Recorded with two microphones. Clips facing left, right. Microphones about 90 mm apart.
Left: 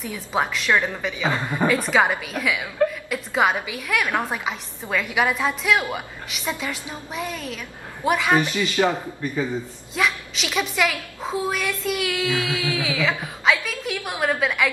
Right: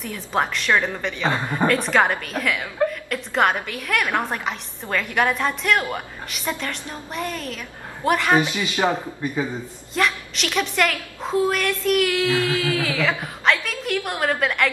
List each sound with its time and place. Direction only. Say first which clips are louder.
0.0 s a woman's voice: right 1 dB; centre (ahead or behind)
8.4 s a man's voice: even; 15° right (ahead or behind)
9.9 s a woman's voice: right 1 dB; centre (ahead or behind)